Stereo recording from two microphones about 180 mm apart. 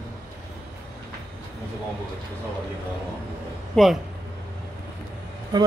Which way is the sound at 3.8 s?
5° left (ahead or behind).